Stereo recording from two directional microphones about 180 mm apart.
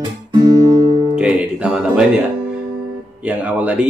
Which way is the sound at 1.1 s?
5° right (ahead or behind).